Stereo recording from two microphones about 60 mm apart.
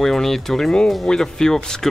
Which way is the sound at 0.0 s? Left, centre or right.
Centre.